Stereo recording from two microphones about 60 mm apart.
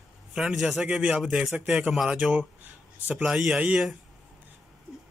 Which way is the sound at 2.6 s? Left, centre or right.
Right.